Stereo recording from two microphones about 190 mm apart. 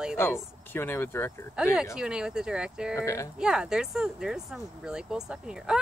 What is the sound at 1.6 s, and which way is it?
Speech, 5° right (ahead or behind).